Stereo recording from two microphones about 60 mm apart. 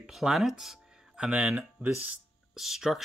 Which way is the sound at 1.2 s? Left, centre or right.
Centre.